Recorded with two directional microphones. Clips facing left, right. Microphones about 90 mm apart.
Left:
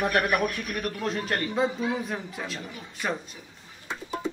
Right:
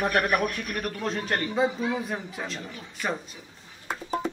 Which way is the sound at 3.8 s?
50° right (ahead or behind).